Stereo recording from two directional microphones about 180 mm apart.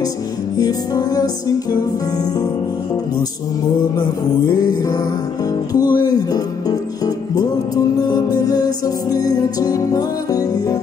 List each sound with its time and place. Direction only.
0.6 s music: 20° left (ahead or behind)
4.0 s music: 20° left (ahead or behind)